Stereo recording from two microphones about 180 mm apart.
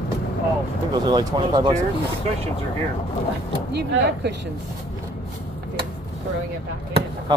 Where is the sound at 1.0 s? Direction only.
25° right (ahead or behind).